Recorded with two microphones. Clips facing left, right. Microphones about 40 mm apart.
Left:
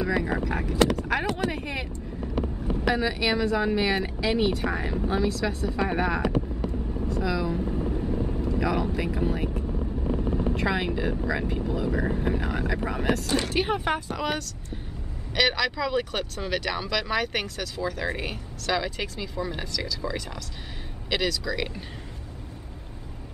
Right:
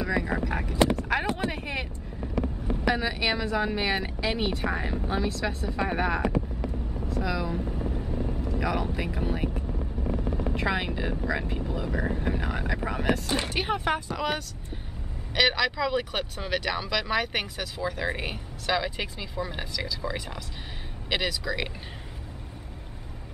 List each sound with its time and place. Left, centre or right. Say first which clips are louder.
0.4 s speech: left 2 dB; centre
1.1 s a sound: even; centre
1.5 s speech: left 1 dB; centre
2.9 s speech: left 2 dB; centre
6.2 s vehicle: left 2 dB; left
7.1 s speech: left 2 dB; centre
10.5 s speech: left 2 dB; centre